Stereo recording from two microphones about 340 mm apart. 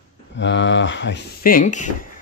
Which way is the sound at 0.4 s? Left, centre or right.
Left.